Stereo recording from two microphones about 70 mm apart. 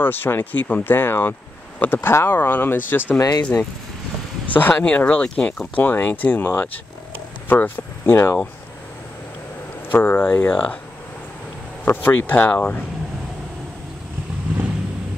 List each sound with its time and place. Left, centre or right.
0.0 s speech: left
3.2 s speech: left
4.5 s speech: left
9.8 s speech: left
11.8 s speech: left